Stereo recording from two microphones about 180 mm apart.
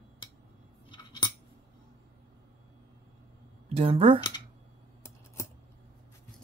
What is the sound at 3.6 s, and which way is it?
Speech, 35° right (ahead or behind).